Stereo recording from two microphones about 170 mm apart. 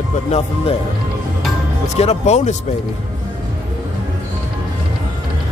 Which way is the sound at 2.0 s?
40° left (ahead or behind).